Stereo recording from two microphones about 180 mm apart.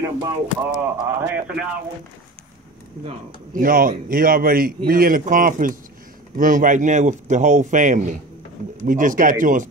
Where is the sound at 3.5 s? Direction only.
50° right (ahead or behind).